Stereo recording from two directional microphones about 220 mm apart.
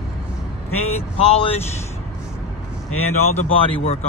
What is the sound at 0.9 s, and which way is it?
Speech, 25° left (ahead or behind).